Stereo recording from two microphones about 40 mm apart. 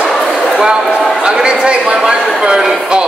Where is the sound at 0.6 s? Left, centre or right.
Right.